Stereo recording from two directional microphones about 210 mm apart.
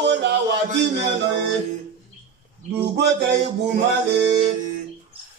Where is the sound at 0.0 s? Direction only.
55° right (ahead or behind).